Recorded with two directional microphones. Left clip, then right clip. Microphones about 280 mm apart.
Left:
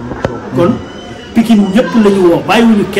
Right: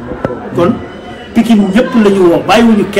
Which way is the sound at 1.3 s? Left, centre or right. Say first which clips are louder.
Even; centre.